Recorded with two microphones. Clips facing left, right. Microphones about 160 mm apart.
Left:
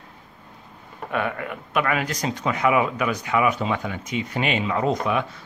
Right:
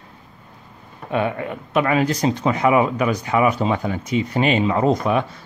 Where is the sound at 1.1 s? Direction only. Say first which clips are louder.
Right 4 dB; 25° right (ahead or behind).